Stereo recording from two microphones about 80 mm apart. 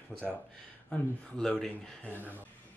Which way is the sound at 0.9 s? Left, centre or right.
Centre.